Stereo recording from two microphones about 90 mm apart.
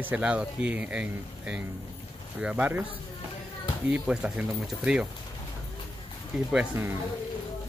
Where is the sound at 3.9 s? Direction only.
10° right (ahead or behind).